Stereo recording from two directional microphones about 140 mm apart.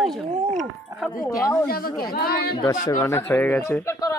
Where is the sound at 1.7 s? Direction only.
90° left.